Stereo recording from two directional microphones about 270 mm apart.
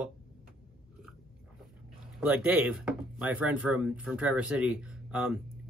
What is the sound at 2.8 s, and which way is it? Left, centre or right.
Speech, centre.